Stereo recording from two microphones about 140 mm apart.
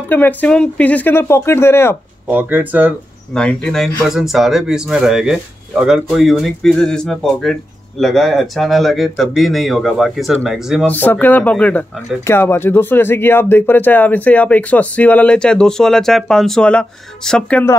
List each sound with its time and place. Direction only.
0.1 s speech: 10° left (ahead or behind)
2.2 s speech: 10° right (ahead or behind)
3.3 s speech: 5° left (ahead or behind)
10.9 s speech: 15° left (ahead or behind)